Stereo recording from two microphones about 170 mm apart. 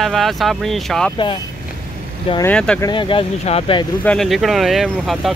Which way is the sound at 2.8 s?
30° left (ahead or behind).